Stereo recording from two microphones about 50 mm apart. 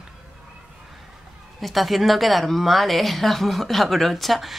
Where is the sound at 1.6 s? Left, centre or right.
Centre.